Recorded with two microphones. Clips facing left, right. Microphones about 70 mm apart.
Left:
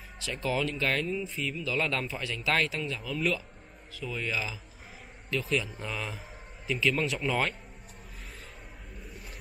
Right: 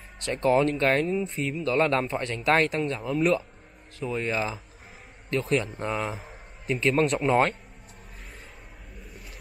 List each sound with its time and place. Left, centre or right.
0.2 s speech: right
1.2 s a man's voice: right
2.5 s a man's voice: right
5.8 s a man's voice: right